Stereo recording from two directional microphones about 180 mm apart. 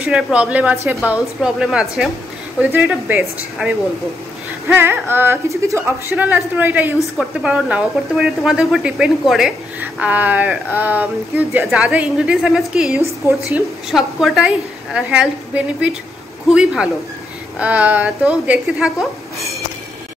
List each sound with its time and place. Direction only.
0.0 s a woman's voice: 5° right (ahead or behind)
13.0 s a woman's voice: 15° right (ahead or behind)
13.8 s a woman's voice: centre (ahead or behind)